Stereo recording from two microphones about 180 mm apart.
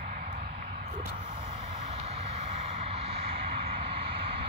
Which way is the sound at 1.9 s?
40° right (ahead or behind).